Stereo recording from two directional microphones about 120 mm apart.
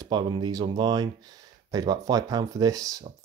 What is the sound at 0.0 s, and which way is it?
Speech, 40° right (ahead or behind).